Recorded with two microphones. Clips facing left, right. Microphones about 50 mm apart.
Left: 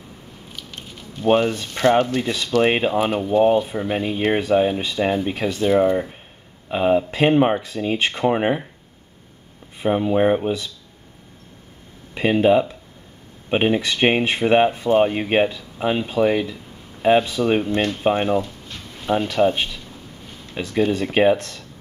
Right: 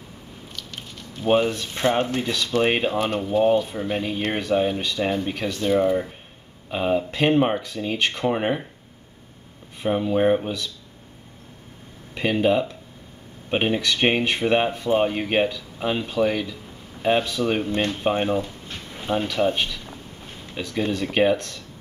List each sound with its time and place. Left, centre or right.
0.5 s squish: centre
0.9 s a sound: centre
2.2 s speech: left
2.6 s speech: centre
9.8 s speech: centre
12.1 s speech: centre
18.4 s a sound: centre
19.3 s speech: centre